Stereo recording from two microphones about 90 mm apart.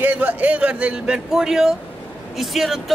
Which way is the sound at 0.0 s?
20° right (ahead or behind).